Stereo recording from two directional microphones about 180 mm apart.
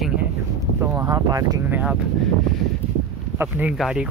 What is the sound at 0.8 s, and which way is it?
Speech, 15° right (ahead or behind).